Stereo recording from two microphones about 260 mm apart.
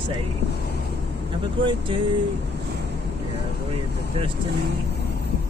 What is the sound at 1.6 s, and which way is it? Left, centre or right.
Speech, centre.